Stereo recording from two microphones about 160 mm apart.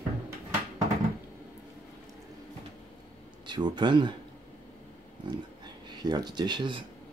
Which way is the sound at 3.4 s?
30° right (ahead or behind).